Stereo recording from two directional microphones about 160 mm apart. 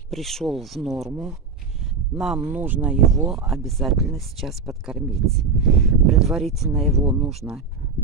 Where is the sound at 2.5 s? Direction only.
10° right (ahead or behind).